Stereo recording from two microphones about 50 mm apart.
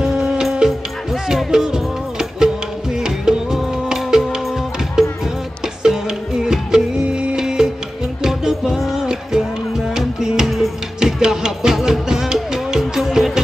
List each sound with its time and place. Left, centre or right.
0.0 s music: centre